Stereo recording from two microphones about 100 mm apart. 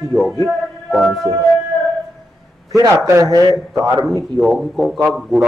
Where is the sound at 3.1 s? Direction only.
30° right (ahead or behind).